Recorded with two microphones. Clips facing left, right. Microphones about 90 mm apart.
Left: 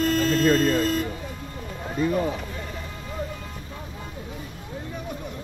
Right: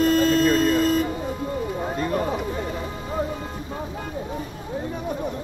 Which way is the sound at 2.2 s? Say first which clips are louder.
Right 2 dB; 35° right (ahead or behind).